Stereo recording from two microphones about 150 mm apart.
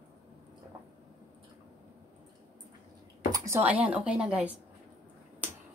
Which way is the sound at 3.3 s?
15° right (ahead or behind).